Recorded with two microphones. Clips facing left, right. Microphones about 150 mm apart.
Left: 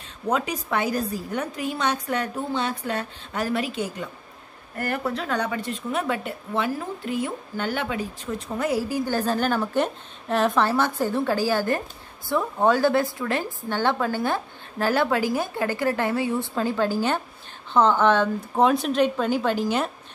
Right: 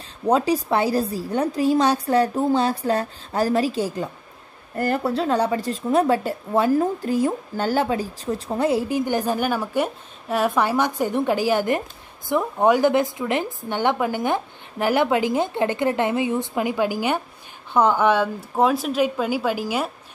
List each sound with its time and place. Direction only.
0.3 s a woman's voice: 30° right (ahead or behind); by 19.9 s 10° right (ahead or behind)